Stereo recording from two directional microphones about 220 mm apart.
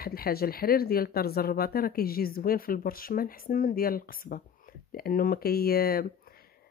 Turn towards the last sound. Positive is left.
turn(degrees=40)  # may be behind; listen again after turning